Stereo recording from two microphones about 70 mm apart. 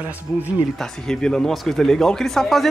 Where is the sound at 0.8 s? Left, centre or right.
Centre.